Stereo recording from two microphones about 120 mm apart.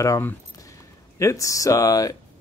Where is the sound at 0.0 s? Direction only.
25° left (ahead or behind).